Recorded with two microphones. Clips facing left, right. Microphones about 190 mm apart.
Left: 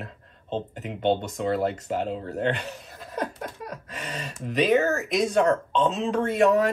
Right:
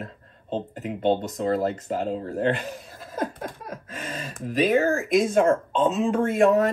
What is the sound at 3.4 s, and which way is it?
Speech, 50° right (ahead or behind).